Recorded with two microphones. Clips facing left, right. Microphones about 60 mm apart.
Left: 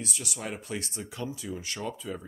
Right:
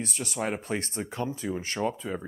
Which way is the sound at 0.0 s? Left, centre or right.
Right.